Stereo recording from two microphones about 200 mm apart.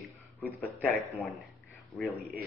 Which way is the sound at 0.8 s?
Centre (ahead or behind).